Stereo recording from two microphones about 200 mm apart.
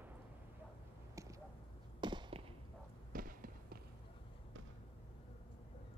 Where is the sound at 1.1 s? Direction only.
15° right (ahead or behind).